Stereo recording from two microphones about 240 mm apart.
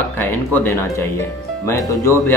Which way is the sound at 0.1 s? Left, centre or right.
Centre.